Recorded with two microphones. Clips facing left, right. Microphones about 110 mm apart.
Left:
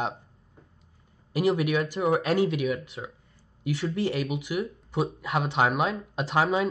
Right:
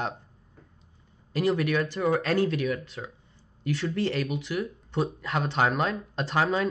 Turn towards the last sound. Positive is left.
turn(degrees=10)  # may be behind; listen again after turning